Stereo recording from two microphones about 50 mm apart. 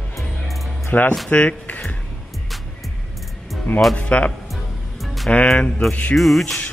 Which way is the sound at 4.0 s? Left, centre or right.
Left.